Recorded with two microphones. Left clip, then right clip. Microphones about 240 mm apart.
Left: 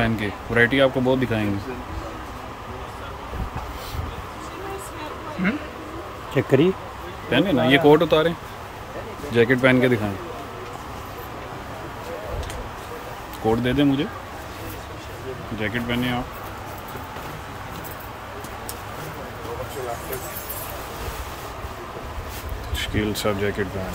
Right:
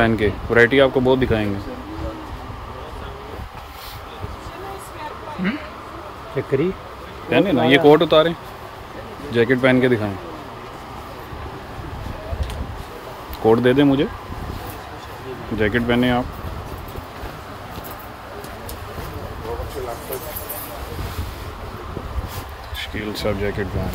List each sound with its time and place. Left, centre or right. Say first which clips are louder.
0.0 s speech: right 6 dB; centre
6.3 s speech: left 2 dB; left
7.2 s speech: right 3 dB; centre
13.5 s speech: right 6 dB; centre
15.6 s speech: right 7 dB; centre
22.8 s speech: left 2 dB; centre